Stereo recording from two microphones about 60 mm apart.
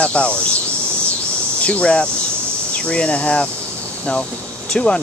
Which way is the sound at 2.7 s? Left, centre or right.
Centre.